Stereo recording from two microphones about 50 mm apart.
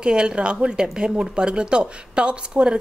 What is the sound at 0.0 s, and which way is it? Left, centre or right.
A woman's voice, centre.